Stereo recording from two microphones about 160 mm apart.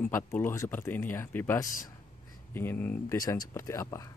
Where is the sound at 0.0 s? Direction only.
10° left (ahead or behind).